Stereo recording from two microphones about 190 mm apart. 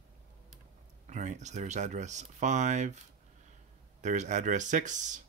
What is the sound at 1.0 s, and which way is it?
Speech, 40° right (ahead or behind).